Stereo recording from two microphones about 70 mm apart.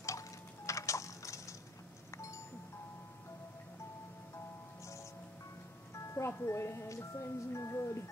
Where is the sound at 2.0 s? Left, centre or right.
Left.